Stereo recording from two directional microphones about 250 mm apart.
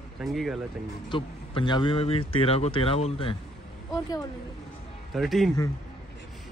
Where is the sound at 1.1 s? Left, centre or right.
Centre.